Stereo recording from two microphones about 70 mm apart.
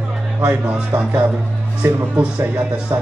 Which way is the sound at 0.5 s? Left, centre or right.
Centre.